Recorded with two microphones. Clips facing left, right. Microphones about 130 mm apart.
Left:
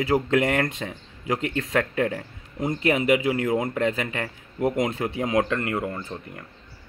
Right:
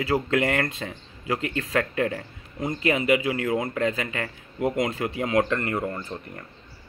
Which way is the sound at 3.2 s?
20° left (ahead or behind).